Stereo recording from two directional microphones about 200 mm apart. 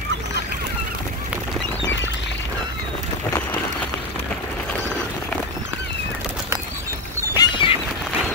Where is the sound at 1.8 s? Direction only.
65° left (ahead or behind).